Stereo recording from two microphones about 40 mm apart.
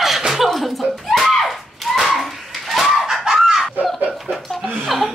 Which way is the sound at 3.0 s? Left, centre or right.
Centre.